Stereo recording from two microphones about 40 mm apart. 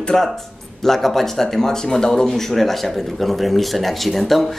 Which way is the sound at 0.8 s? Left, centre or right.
Centre.